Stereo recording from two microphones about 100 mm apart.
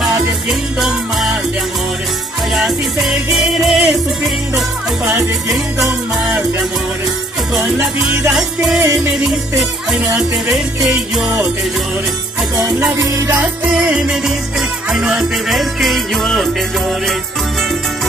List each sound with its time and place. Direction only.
0.0 s music: 5° right (ahead or behind)
2.5 s music: 5° right (ahead or behind)
8.3 s music: 5° right (ahead or behind)
8.8 s music: 35° right (ahead or behind)
9.6 s music: 5° right (ahead or behind)
12.9 s music: 30° right (ahead or behind)
13.3 s music: 15° right (ahead or behind)